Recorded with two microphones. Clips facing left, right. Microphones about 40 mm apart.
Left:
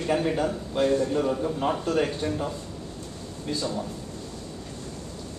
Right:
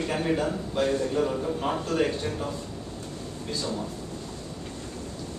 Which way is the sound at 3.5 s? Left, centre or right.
Centre.